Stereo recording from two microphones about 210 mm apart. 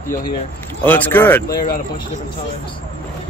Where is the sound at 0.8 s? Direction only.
10° left (ahead or behind).